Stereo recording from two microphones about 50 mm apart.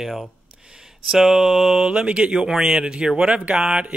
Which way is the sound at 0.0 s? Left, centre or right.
Centre.